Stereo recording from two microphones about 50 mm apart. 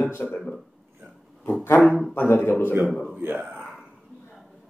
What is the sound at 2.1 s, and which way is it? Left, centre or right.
Speech, left.